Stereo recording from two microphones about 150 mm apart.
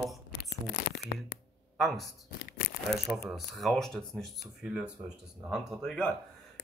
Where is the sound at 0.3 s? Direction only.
90° left.